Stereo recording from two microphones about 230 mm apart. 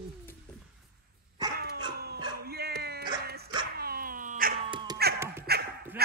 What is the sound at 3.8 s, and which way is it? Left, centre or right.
Cat, right.